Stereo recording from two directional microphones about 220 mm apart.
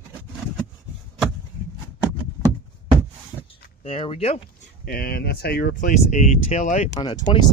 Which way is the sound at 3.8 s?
25° left (ahead or behind).